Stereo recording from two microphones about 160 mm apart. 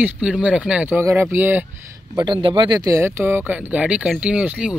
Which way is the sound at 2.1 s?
25° right (ahead or behind).